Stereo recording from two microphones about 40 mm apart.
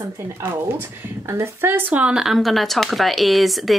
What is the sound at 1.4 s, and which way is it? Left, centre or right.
Speech, right.